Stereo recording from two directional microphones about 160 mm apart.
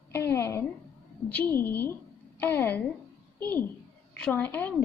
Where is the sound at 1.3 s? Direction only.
10° left (ahead or behind).